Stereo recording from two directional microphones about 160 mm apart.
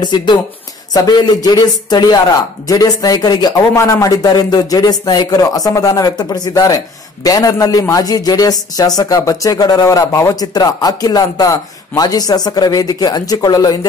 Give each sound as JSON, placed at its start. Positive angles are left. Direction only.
{"t": 0.0, "sound": "a man's voice", "side_deg": 30}